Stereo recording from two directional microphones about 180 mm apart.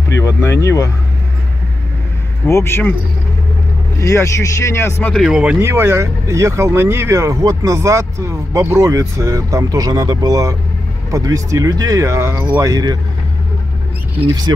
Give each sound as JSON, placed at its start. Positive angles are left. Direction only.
{"t": 0.1, "sound": "speech", "side_deg": 15}
{"t": 2.4, "sound": "speech", "side_deg": 15}
{"t": 4.0, "sound": "speech", "side_deg": 15}
{"t": 5.1, "sound": "speech", "side_deg": -5}